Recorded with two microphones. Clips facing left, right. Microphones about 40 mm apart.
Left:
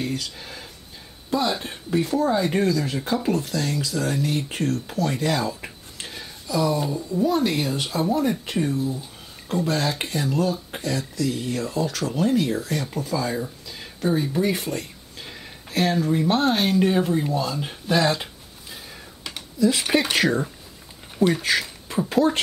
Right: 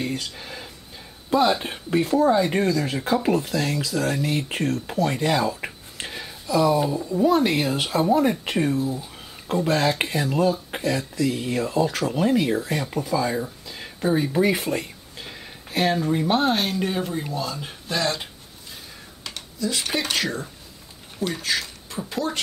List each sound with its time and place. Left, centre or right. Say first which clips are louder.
0.0 s speech: even; centre
1.6 s speech: right 1 dB; right
2.0 s speech: right 4 dB; centre
5.6 s a sound: right 4 dB; centre
7.2 s speech: right 3 dB; centre